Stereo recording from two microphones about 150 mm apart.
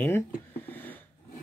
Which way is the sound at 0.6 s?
10° left (ahead or behind).